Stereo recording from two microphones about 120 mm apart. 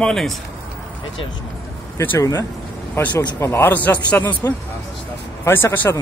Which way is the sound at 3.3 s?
20° left (ahead or behind).